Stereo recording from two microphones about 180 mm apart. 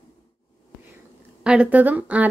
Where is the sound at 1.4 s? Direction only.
5° right (ahead or behind).